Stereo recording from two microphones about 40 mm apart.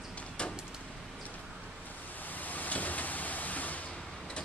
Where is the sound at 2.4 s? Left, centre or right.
Left.